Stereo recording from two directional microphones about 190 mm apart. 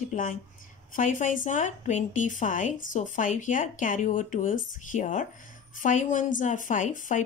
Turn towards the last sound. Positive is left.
turn(degrees=45)  # may be behind; listen again after turning